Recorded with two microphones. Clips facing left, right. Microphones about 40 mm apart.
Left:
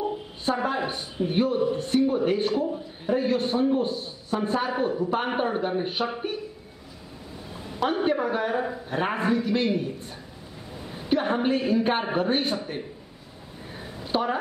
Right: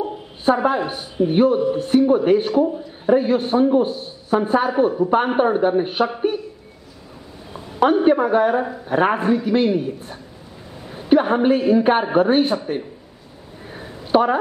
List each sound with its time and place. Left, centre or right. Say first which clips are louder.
0.0 s a woman's voice: right 7 dB; centre
5.9 s a woman's voice: right 8 dB; centre
7.9 s a woman's voice: right 8 dB; centre
14.1 s speech: right 9 dB; right